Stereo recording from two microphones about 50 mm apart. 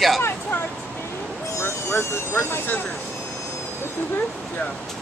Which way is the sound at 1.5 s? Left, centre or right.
Left.